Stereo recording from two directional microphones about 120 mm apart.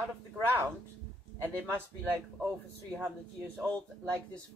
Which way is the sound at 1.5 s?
15° right (ahead or behind).